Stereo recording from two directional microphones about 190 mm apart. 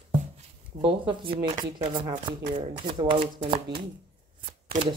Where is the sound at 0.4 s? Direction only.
25° right (ahead or behind).